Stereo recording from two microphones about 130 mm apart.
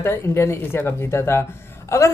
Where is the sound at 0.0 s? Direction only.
20° left (ahead or behind).